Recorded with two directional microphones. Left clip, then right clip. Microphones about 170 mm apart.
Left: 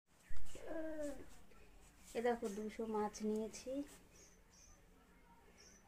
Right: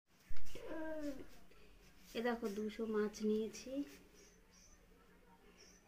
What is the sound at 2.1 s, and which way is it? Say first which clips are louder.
Speech: left 1 dB; 10° left (ahead or behind).